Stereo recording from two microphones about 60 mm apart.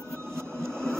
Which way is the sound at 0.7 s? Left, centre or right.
Centre.